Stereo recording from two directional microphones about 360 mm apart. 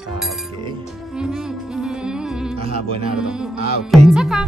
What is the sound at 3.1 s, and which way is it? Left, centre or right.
Music, centre.